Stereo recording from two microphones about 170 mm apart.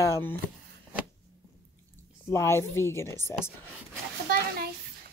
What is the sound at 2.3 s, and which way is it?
Speech, 15° left (ahead or behind).